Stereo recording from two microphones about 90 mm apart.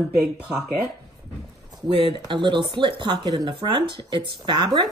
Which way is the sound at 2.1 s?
60° right (ahead or behind).